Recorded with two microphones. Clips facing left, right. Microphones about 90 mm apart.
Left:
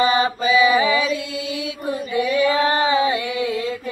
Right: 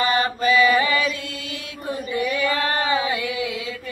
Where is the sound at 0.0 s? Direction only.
15° left (ahead or behind).